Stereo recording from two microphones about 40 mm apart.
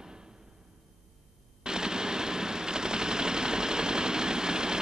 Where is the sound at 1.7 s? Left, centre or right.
Centre.